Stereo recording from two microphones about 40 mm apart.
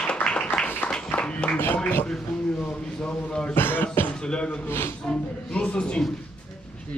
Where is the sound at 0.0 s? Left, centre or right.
Left.